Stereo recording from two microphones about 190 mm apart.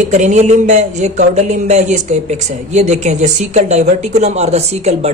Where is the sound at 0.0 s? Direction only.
40° right (ahead or behind).